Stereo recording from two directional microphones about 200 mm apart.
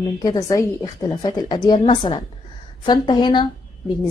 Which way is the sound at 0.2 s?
20° left (ahead or behind).